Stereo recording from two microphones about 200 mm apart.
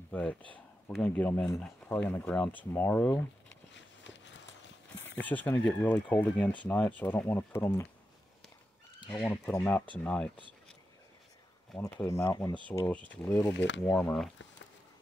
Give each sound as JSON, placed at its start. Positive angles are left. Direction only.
{"t": 0.1, "sound": "speech", "side_deg": 5}
{"t": 3.7, "sound": "a sound", "side_deg": 65}
{"t": 5.2, "sound": "speech", "side_deg": 10}
{"t": 9.1, "sound": "speech", "side_deg": 5}
{"t": 12.0, "sound": "speech", "side_deg": 15}
{"t": 13.5, "sound": "speech", "side_deg": 60}
{"t": 13.8, "sound": "speech", "side_deg": 5}